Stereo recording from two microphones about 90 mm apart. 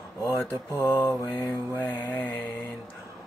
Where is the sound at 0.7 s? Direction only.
25° left (ahead or behind).